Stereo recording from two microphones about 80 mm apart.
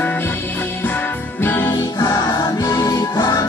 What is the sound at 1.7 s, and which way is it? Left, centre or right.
Music, left.